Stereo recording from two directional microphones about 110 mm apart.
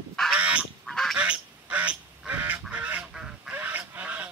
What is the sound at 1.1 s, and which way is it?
Duck, 10° right (ahead or behind).